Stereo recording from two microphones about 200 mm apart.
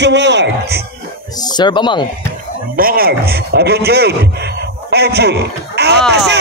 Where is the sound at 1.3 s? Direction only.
20° left (ahead or behind).